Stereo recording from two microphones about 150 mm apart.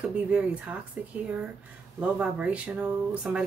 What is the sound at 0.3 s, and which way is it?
Speech, 10° right (ahead or behind).